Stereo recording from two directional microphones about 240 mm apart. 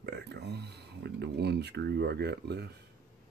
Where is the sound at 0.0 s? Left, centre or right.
Right.